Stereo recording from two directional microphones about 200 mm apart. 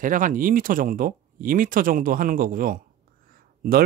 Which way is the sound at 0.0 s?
40° right (ahead or behind).